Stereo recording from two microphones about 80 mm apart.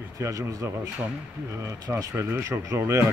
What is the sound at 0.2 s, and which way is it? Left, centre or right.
A man's voice, right.